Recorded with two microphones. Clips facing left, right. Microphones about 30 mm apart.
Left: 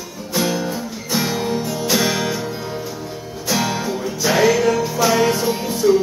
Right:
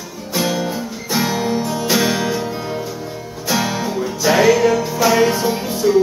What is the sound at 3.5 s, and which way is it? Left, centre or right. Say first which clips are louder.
Music: right 1 dB; centre.